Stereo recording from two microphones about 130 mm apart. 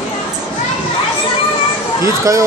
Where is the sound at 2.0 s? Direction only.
25° right (ahead or behind).